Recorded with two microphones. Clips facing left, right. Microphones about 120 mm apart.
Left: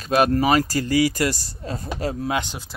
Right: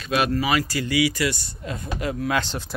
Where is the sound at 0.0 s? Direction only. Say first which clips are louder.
Left 4 dB; 40° left (ahead or behind).